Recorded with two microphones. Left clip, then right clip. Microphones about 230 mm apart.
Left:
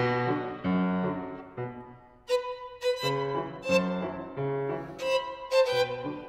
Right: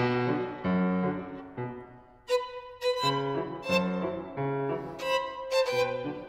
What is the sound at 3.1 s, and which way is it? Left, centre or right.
Music, right.